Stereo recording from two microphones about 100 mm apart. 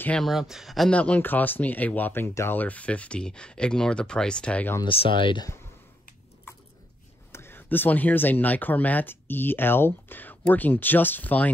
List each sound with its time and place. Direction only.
0.2 s speech: centre (ahead or behind)
0.9 s speech: 15° left (ahead or behind)
2.2 s speech: 30° left (ahead or behind)
2.5 s speech: 15° left (ahead or behind)
4.8 s speech: 60° left (ahead or behind)
7.3 s speech: 20° left (ahead or behind)